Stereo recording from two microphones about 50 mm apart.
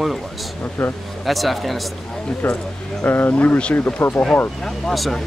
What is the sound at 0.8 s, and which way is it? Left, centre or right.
Speech, centre.